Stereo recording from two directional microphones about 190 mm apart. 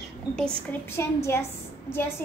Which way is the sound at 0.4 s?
10° left (ahead or behind).